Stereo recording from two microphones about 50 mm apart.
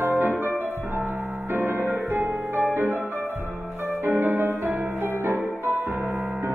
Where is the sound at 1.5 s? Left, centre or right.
Right.